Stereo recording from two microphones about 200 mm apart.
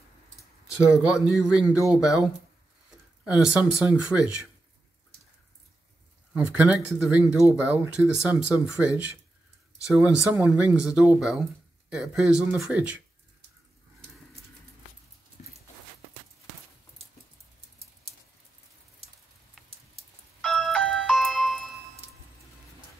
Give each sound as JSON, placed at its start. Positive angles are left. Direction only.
{"t": 0.7, "sound": "speech", "side_deg": -5}
{"t": 6.3, "sound": "speech", "side_deg": -5}
{"t": 15.4, "sound": "dog", "side_deg": 35}
{"t": 20.4, "sound": "music", "side_deg": 0}